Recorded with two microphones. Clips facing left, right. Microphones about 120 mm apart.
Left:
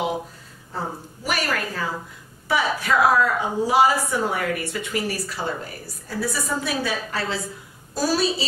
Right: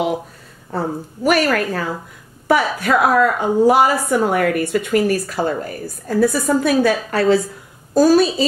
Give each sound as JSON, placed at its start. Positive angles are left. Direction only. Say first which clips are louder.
{"t": 0.7, "sound": "a woman's voice", "louder": "right 8 dB", "side_deg": -60}